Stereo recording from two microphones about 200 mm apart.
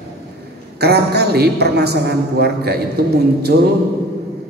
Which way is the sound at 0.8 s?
55° right (ahead or behind).